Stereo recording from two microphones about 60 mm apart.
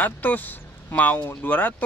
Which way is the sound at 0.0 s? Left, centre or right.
Left.